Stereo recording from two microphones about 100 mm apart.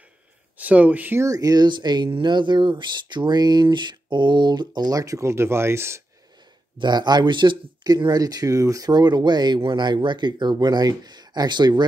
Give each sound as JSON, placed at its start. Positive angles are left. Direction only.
{"t": 0.6, "sound": "speech", "side_deg": -15}
{"t": 1.2, "sound": "speech", "side_deg": -35}
{"t": 2.0, "sound": "speech", "side_deg": -60}
{"t": 6.8, "sound": "speech", "side_deg": -45}